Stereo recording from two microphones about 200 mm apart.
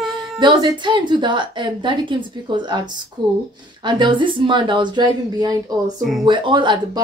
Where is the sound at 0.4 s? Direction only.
20° right (ahead or behind).